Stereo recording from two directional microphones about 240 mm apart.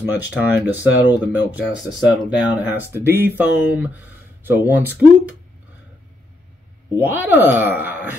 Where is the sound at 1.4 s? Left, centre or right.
Centre.